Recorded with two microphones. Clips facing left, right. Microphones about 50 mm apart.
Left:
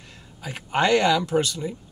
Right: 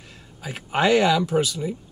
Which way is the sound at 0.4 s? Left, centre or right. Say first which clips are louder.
Even; centre.